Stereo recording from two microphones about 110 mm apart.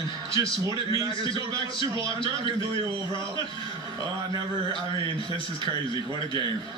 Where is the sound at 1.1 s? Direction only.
50° left (ahead or behind).